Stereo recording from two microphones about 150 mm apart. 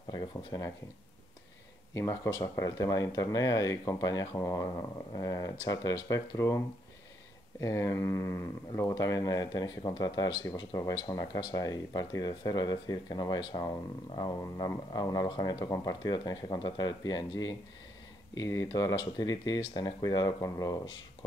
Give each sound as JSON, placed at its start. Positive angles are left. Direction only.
{"t": 0.1, "sound": "speech", "side_deg": 25}
{"t": 2.0, "sound": "speech", "side_deg": 20}
{"t": 7.6, "sound": "speech", "side_deg": 20}